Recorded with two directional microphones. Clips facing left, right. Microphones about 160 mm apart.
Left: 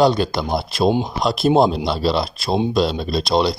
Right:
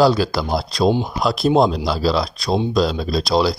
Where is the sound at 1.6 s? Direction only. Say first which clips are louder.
Even; centre (ahead or behind).